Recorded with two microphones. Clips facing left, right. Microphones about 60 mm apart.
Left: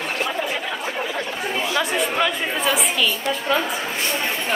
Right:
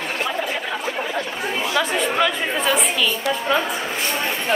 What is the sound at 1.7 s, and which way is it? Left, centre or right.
Chatter, centre.